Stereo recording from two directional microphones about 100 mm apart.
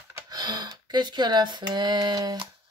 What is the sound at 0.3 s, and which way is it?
Speech, 40° right (ahead or behind).